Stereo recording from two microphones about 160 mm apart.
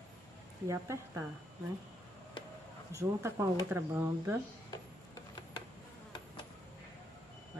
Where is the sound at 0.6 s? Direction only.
20° right (ahead or behind).